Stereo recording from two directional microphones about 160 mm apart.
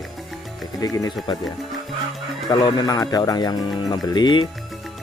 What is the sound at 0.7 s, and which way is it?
Speech, 25° left (ahead or behind).